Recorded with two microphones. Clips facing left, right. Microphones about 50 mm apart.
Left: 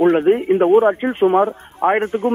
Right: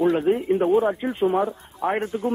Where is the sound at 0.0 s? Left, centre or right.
Left.